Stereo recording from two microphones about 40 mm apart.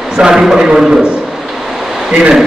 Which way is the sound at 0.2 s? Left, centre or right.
Centre.